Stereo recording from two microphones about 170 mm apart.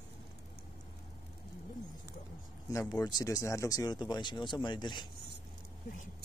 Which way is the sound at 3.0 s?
20° left (ahead or behind).